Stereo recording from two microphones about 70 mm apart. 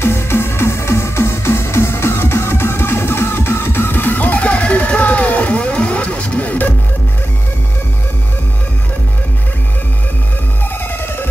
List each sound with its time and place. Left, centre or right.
0.0 s music: left